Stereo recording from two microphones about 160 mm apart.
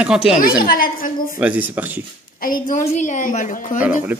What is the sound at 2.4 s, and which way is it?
A woman's voice, 60° left (ahead or behind).